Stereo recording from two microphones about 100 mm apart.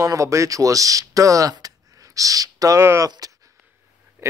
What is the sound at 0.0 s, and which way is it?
Speech, 30° right (ahead or behind).